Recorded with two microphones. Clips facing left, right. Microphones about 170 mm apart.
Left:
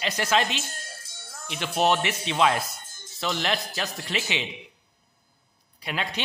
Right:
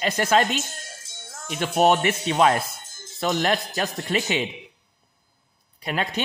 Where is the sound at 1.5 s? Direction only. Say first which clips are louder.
Right 4 dB; 45° right (ahead or behind).